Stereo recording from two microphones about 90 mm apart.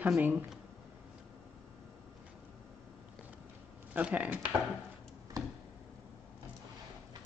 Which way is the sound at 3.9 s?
15° right (ahead or behind).